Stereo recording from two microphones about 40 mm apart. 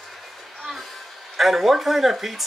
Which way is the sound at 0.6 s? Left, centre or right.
Centre.